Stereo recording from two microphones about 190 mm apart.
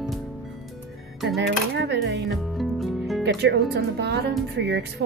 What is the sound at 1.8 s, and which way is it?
Speech, 65° right (ahead or behind).